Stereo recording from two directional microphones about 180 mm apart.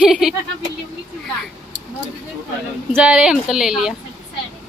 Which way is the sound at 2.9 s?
5° right (ahead or behind).